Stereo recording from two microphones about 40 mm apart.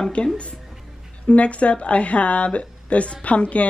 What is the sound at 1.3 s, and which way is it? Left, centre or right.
Speech, left.